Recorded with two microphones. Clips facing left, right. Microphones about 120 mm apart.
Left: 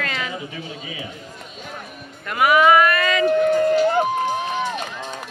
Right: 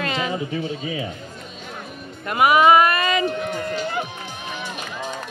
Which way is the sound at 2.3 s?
20° right (ahead or behind).